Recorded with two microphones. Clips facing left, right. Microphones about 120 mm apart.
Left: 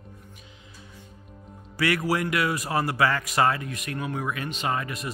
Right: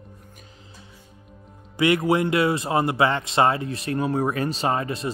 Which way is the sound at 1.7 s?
20° right (ahead or behind).